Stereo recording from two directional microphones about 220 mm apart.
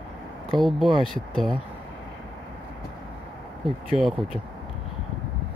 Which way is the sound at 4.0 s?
Centre (ahead or behind).